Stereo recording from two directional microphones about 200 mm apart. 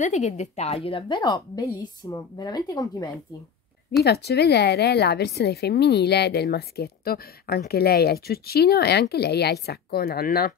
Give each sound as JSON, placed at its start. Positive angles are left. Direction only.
{"t": 0.0, "sound": "a woman's voice", "side_deg": 35}
{"t": 4.0, "sound": "a woman's voice", "side_deg": 55}